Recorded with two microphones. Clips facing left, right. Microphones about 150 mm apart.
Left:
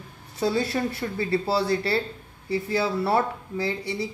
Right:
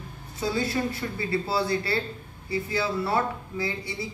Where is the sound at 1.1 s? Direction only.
35° left (ahead or behind).